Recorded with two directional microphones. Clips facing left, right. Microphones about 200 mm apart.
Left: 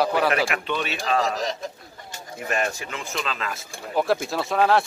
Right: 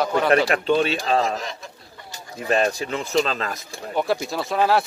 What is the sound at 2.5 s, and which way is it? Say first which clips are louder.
A man's voice: right 6 dB; 35° right (ahead or behind).